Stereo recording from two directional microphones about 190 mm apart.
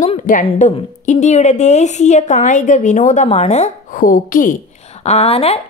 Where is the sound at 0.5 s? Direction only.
35° left (ahead or behind).